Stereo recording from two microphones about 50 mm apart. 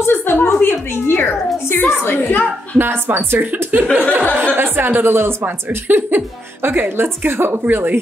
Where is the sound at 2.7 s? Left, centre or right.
Right.